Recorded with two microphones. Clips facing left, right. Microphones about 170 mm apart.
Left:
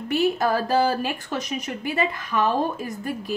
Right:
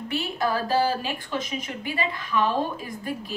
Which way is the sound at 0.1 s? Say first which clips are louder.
Left 6 dB; 40° left (ahead or behind).